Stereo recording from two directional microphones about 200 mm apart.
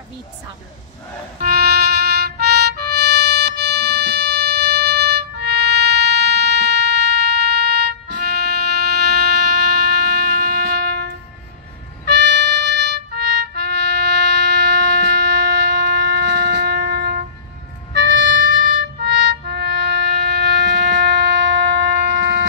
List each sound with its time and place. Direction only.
1.4 s music: 55° right (ahead or behind)